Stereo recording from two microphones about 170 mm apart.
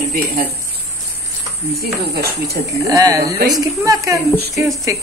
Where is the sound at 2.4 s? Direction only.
20° right (ahead or behind).